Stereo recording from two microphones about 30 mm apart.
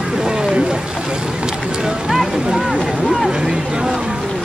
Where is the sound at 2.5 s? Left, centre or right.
Centre.